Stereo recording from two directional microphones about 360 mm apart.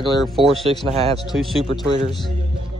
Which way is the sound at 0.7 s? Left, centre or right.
Centre.